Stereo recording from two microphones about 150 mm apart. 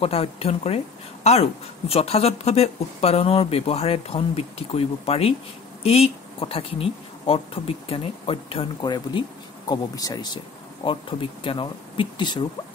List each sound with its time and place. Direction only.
0.0 s speech: 40° left (ahead or behind)
9.7 s speech: 25° left (ahead or behind)